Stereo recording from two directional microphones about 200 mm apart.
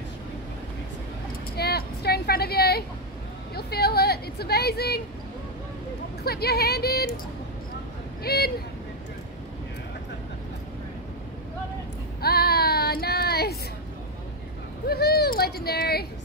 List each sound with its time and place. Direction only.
1.6 s vehicle: 55° left (ahead or behind)
3.5 s speech: 50° left (ahead or behind)
6.2 s speech: 50° left (ahead or behind)
8.2 s speech: 50° left (ahead or behind)
12.2 s child singing: 50° left (ahead or behind)
14.9 s speech: 50° left (ahead or behind)